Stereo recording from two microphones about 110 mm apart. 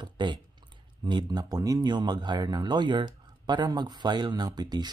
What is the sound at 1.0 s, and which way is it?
Speech, 40° right (ahead or behind).